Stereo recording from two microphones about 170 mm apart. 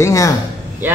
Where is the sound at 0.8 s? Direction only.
10° right (ahead or behind).